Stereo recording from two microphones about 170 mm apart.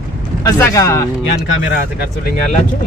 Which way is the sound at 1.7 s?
75° left (ahead or behind).